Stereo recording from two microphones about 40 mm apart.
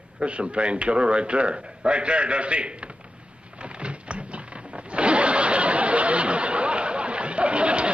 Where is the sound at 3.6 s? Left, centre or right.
Right.